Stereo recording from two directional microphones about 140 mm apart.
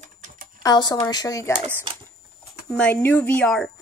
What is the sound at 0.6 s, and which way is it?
Speech, 30° left (ahead or behind).